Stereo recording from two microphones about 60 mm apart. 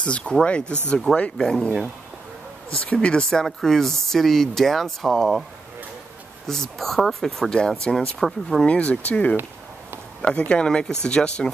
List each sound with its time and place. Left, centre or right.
0.0 s speech: centre
1.1 s speech: centre
2.8 s speech: centre
6.4 s speech: centre
8.6 s speech: left